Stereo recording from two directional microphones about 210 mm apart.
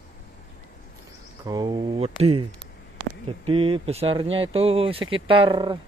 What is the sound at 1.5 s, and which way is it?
Speech, 20° right (ahead or behind).